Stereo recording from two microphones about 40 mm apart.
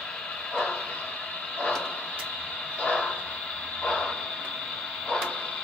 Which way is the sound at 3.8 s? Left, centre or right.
Left.